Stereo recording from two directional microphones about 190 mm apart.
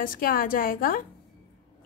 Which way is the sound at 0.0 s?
45° left (ahead or behind).